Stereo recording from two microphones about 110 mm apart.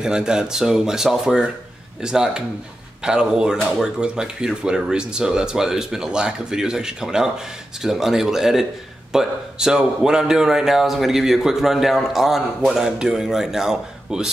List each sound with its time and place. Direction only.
0.0 s a man's voice: 5° right (ahead or behind)